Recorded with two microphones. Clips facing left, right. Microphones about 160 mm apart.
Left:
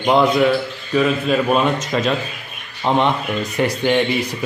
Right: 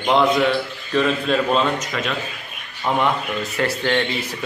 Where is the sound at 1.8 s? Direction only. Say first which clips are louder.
Left 6 dB; 30° left (ahead or behind); by 4.4 s 15° left (ahead or behind).